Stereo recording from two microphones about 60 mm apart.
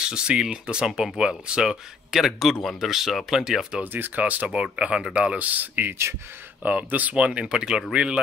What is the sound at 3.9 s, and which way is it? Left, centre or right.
Speech, right.